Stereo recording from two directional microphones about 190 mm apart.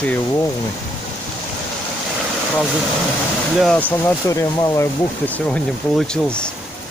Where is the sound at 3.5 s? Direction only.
5° left (ahead or behind).